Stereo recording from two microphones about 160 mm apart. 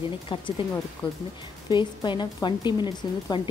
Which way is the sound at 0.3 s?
35° left (ahead or behind).